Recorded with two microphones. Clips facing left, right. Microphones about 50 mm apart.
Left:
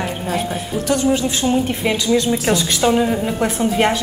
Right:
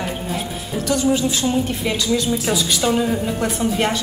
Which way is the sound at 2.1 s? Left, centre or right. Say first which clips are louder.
Left 4 dB; left.